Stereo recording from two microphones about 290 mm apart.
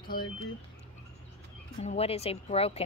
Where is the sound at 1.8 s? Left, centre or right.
Left.